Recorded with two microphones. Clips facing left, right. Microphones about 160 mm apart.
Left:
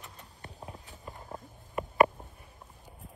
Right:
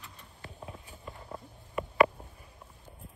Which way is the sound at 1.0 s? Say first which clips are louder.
Even; 20° left (ahead or behind).